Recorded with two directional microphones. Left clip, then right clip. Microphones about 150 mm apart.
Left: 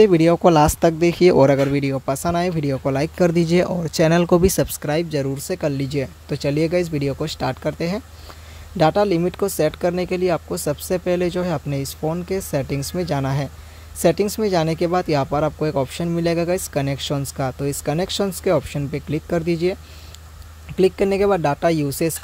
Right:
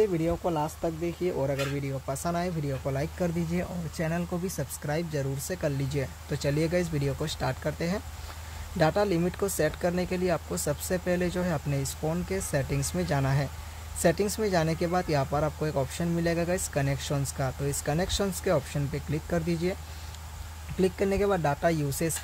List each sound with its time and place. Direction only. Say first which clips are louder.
0.0 s speech: left 13 dB; 90° left; by 22.1 s 45° left (ahead or behind)